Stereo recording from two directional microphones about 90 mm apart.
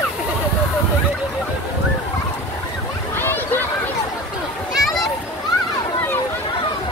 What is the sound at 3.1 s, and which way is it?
Boat, 25° left (ahead or behind).